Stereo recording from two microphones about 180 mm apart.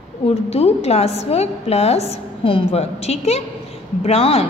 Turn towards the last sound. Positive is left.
turn(degrees=35)  # may be behind; listen again after turning